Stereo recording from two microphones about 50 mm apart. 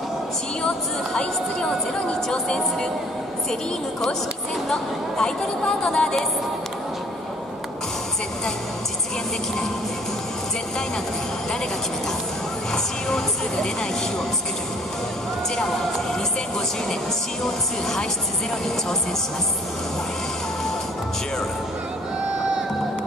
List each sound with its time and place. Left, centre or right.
0.7 s speech: centre
4.6 s speech: centre
12.7 s speech: centre
15.5 s speech: centre